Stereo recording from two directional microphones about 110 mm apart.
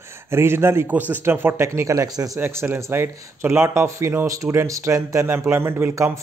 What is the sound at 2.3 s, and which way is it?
Speech, 20° right (ahead or behind).